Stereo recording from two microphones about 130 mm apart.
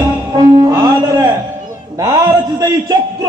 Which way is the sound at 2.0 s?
30° right (ahead or behind).